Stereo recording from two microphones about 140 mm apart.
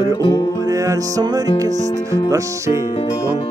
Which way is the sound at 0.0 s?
35° left (ahead or behind).